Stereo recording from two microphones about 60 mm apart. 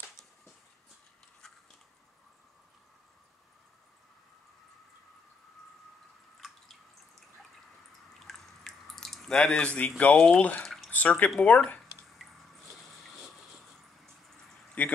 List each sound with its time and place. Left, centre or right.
8.2 s drip: centre; by 10.1 s left
10.1 s speech: centre
10.6 s drip: centre
10.9 s speech: left
12.2 s a sound: centre
14.8 s speech: left